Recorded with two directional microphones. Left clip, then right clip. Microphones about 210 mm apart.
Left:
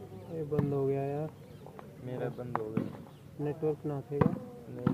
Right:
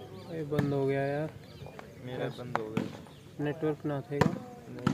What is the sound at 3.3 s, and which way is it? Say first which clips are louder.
Speech: right 1 dB; 40° right (ahead or behind).